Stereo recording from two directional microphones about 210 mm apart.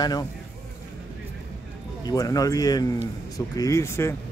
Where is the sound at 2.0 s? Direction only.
15° left (ahead or behind).